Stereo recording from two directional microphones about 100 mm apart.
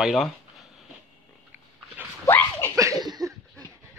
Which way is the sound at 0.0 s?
Centre (ahead or behind).